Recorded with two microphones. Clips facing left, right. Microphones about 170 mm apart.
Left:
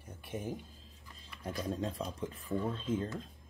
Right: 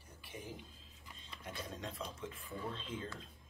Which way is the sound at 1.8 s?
35° left (ahead or behind).